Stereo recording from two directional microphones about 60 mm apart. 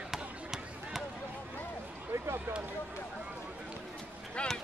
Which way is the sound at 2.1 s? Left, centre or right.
Right.